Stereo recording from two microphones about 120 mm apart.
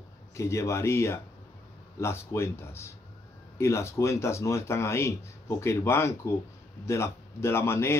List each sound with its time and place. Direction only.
0.4 s speech: 25° left (ahead or behind)